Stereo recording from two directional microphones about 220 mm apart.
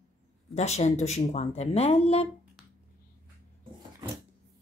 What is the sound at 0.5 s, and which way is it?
Speech, 30° left (ahead or behind).